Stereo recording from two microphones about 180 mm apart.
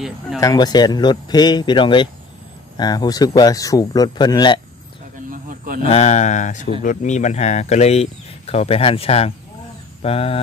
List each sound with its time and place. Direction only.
0.4 s speech: 20° left (ahead or behind)
5.3 s a sound: 50° right (ahead or behind)
5.9 s speech: 40° left (ahead or behind)